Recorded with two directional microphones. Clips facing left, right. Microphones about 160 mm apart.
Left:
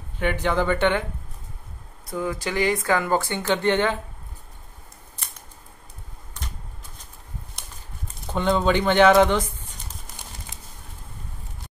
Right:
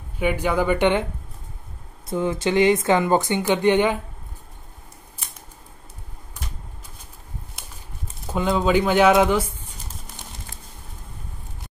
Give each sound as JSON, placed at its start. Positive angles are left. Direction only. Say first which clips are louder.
{"t": 0.2, "sound": "speech", "louder": "right 2 dB", "side_deg": -10}
{"t": 2.0, "sound": "speech", "louder": "right 5 dB", "side_deg": -25}
{"t": 7.6, "sound": "horse", "louder": "right 1 dB", "side_deg": 0}
{"t": 8.3, "sound": "speech", "louder": "right 1 dB", "side_deg": -5}